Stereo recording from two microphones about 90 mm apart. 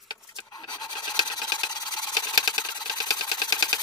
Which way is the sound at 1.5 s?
40° left (ahead or behind).